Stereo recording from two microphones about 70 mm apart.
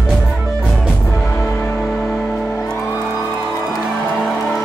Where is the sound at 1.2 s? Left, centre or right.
Left.